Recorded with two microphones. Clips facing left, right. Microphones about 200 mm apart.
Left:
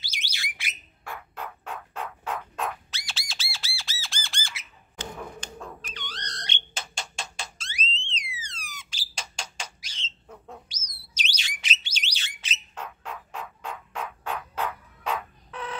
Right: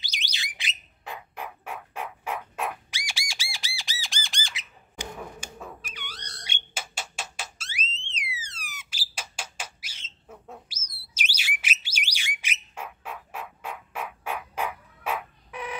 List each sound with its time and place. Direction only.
0.0 s bird: 15° right (ahead or behind)
3.5 s squawk: 15° right (ahead or behind)
5.2 s a sound: 5° right (ahead or behind)
11.1 s bird: 5° right (ahead or behind)